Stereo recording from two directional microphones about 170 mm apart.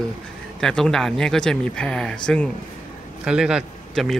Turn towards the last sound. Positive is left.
turn(degrees=0)  # may be behind; listen again after turning